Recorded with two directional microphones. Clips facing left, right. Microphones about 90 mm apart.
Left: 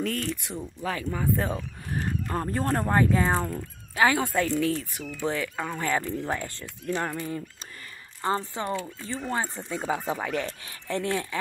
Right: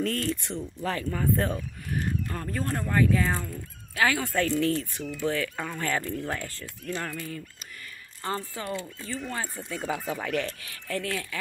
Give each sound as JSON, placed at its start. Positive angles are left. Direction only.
{"t": 0.0, "sound": "speech", "side_deg": 5}
{"t": 1.5, "sound": "speech", "side_deg": 30}
{"t": 3.3, "sound": "speech", "side_deg": 45}
{"t": 3.9, "sound": "speech", "side_deg": 25}
{"t": 4.5, "sound": "speech", "side_deg": 10}
{"t": 5.2, "sound": "speech", "side_deg": 20}